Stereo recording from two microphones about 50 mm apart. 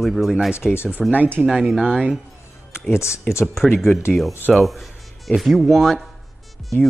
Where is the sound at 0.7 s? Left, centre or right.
Left.